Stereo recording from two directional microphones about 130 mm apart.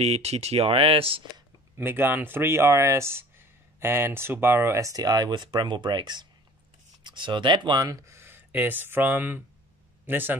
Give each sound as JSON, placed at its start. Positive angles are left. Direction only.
{"t": 0.0, "sound": "speech", "side_deg": -55}
{"t": 1.8, "sound": "speech", "side_deg": -15}